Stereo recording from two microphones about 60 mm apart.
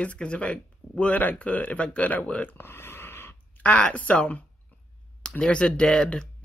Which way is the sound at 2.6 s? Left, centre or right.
Left.